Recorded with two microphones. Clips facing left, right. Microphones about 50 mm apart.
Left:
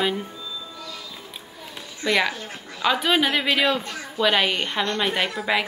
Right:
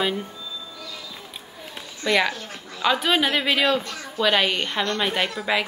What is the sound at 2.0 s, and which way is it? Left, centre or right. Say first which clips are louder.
A woman's voice: right 1 dB; centre.